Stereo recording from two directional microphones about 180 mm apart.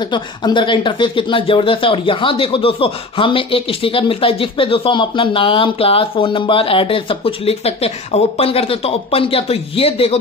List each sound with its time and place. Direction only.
0.0 s speech: 25° left (ahead or behind)